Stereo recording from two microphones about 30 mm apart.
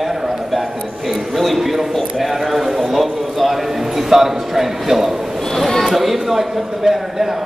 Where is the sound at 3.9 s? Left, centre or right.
Centre.